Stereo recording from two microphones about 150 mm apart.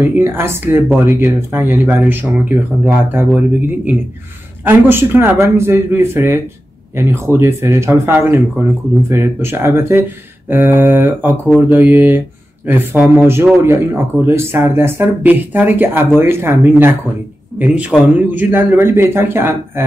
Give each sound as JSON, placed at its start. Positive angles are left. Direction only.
{"t": 0.0, "sound": "speech", "side_deg": -15}